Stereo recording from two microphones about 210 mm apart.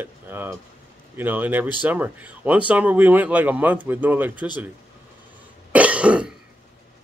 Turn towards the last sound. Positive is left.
turn(degrees=-5)  # may be behind; listen again after turning